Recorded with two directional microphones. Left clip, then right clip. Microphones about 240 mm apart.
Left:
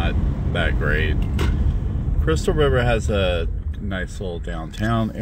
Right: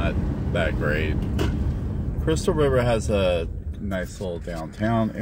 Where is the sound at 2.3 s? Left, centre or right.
Centre.